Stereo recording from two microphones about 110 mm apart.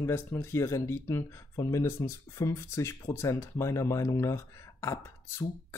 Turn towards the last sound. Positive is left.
turn(degrees=25)  # may be behind; listen again after turning